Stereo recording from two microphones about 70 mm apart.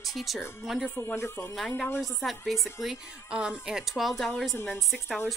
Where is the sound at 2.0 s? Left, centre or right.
Centre.